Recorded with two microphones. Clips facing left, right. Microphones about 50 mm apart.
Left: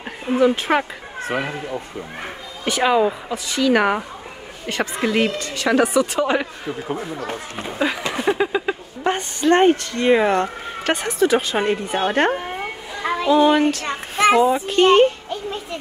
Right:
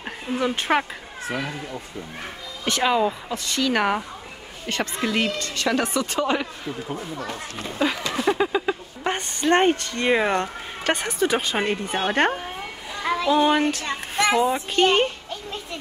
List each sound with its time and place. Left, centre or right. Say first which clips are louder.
0.4 s speech: left 5 dB; centre
1.2 s speech: left 5 dB; left
2.6 s speech: left 4 dB; centre
6.9 s speech: left 4 dB; left
7.6 s speech: left 2 dB; centre
13.0 s music: left 1 dB; centre
13.4 s speech: left 4 dB; centre